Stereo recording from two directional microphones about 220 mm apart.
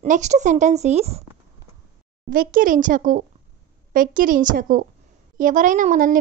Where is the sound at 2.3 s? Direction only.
40° right (ahead or behind).